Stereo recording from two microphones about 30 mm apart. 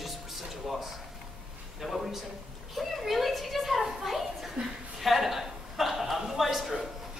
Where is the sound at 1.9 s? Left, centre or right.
Centre.